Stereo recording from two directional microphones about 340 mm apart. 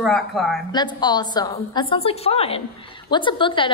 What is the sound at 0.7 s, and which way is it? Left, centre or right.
A woman's voice, centre.